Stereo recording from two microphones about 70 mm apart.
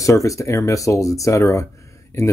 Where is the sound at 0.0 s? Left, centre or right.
Left.